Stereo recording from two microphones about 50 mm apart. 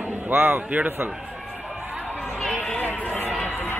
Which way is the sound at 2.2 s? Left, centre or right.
Centre.